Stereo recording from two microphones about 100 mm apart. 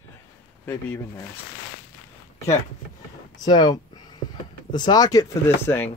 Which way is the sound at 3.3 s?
40° left (ahead or behind).